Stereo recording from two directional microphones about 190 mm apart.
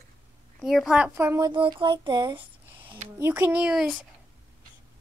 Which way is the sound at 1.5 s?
25° right (ahead or behind).